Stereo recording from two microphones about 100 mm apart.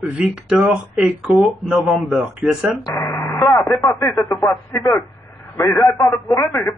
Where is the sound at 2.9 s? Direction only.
25° left (ahead or behind).